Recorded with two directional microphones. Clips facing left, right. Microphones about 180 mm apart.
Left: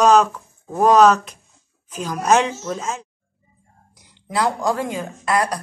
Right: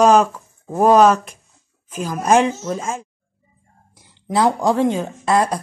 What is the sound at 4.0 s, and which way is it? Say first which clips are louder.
Speech: right 4 dB; 25° right (ahead or behind).